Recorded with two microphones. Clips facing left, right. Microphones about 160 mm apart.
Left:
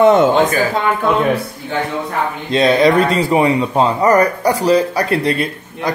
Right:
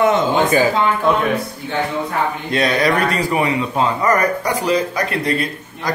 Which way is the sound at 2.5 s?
25° left (ahead or behind).